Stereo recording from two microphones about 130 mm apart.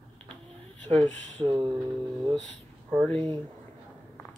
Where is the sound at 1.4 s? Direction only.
35° right (ahead or behind).